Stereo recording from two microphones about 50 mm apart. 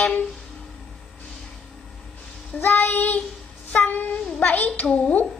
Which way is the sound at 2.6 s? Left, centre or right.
Left.